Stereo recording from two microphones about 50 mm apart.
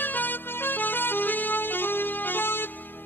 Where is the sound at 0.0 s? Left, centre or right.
Left.